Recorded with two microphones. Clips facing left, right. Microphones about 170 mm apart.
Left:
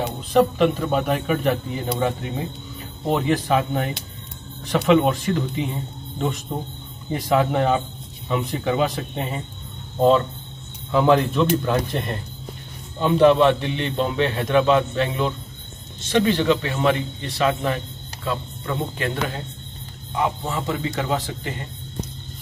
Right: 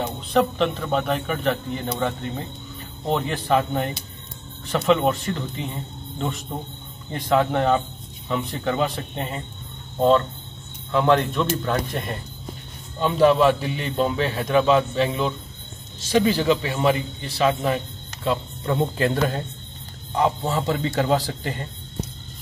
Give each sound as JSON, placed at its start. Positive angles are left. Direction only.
{"t": 0.3, "sound": "a man's voice", "side_deg": 5}
{"t": 18.2, "sound": "speech", "side_deg": -25}
{"t": 18.9, "sound": "a man's voice", "side_deg": -40}
{"t": 20.4, "sound": "a man's voice", "side_deg": -35}